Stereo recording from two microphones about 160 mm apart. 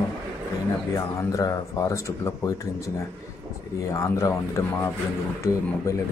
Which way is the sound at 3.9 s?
20° left (ahead or behind).